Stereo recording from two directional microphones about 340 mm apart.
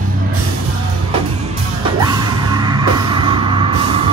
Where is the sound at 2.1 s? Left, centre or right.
Centre.